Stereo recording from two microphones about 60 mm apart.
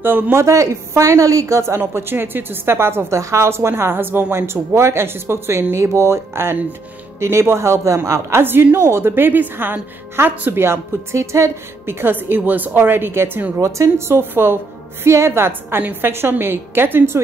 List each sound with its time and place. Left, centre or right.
0.0 s a woman's voice: right
0.4 s a woman's voice: right
2.0 s a woman's voice: right
3.2 s a woman's voice: right
13.6 s a woman's voice: right